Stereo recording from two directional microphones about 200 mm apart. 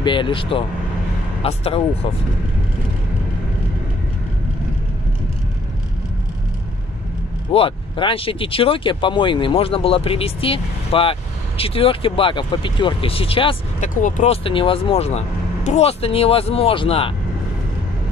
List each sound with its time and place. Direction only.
0.0 s speech: 25° left (ahead or behind)
7.5 s speech: 25° left (ahead or behind)